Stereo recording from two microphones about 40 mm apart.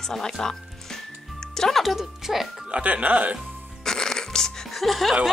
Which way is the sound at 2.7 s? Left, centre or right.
Right.